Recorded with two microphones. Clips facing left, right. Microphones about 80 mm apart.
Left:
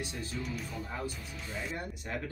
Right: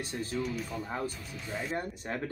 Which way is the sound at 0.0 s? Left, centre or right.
Right.